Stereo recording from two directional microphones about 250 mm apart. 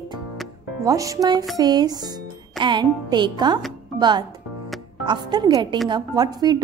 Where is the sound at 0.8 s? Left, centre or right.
Centre.